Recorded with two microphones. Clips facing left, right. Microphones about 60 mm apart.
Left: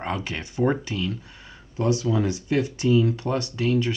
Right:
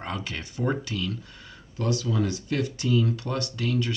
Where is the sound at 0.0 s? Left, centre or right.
Left.